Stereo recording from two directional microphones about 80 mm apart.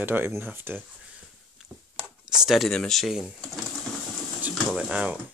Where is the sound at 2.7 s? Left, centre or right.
Centre.